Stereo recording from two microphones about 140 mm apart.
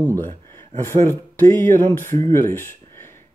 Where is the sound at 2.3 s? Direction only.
15° left (ahead or behind).